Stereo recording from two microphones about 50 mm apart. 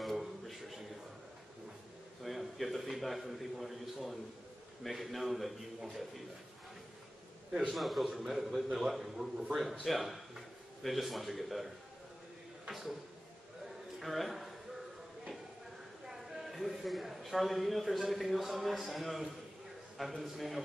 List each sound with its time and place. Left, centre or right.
0.0 s a sound: centre
2.2 s a man's voice: centre
7.7 s a man's voice: centre
13.9 s a man's voice: centre
16.1 s a man's voice: centre